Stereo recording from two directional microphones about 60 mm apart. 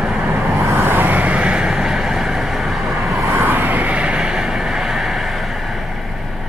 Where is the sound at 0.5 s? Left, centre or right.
Right; by 3.1 s centre.